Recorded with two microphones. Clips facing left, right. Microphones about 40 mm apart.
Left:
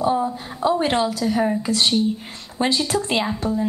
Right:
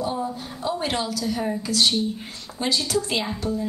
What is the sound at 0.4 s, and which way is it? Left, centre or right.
Speech, left.